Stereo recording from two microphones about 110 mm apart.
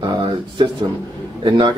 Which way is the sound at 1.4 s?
45° right (ahead or behind).